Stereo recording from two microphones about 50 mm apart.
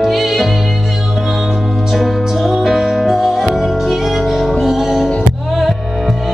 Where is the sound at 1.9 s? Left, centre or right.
Centre.